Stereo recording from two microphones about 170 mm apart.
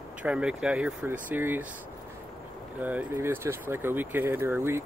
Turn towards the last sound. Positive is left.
turn(degrees=-15)  # may be behind; listen again after turning